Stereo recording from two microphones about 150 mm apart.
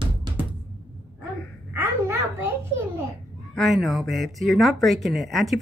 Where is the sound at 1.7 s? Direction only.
15° right (ahead or behind).